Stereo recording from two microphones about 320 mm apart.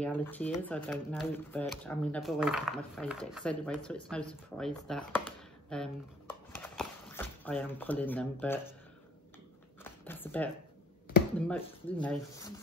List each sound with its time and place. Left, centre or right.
0.0 s speech: centre
5.7 s a sound: centre
10.0 s speech: centre
12.0 s speech: centre